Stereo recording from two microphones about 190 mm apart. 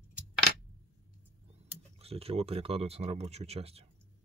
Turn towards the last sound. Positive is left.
turn(degrees=-35)  # may be behind; listen again after turning